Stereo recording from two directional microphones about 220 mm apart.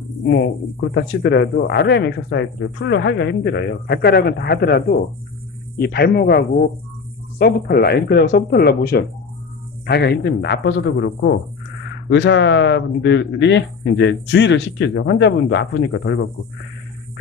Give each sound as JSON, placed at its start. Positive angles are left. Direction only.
{"t": 0.9, "sound": "speech", "side_deg": 45}